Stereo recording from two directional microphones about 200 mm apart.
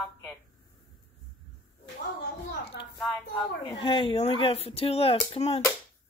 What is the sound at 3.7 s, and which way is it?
Speech, 25° left (ahead or behind).